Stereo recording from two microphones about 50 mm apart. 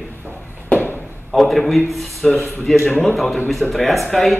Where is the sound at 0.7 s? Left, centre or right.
Left.